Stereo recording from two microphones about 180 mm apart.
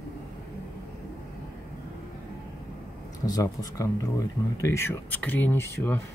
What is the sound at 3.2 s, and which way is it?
Speech, 20° left (ahead or behind).